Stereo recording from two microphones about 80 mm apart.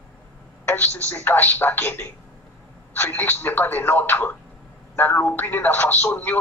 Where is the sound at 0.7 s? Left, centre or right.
Left.